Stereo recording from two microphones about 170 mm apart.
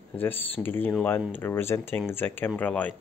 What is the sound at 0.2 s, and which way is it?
Speech, 10° left (ahead or behind).